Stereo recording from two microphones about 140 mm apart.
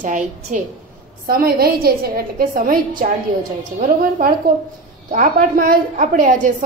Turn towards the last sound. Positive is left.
turn(degrees=-75)  # may be behind; listen again after turning